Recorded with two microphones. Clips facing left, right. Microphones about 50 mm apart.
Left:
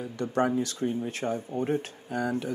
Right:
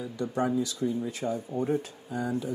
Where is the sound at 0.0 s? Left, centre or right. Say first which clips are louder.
Left 2 dB; left.